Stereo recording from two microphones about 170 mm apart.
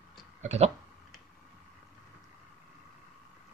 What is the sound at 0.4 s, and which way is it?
Speech, 40° right (ahead or behind).